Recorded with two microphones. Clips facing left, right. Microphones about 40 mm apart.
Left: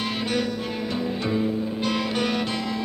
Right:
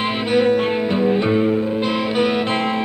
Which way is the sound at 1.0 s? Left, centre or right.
Right.